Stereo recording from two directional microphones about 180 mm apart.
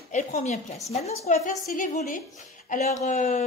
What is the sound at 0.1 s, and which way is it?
A woman's voice, 40° left (ahead or behind).